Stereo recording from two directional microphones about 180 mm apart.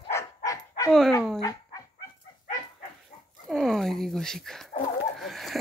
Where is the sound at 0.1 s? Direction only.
20° left (ahead or behind).